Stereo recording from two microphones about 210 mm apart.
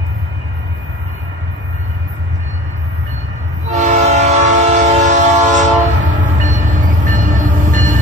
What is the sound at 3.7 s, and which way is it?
Train, 30° right (ahead or behind).